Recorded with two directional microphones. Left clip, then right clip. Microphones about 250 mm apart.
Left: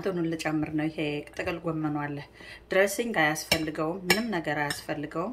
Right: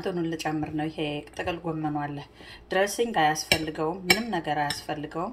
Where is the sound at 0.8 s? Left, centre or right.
Left.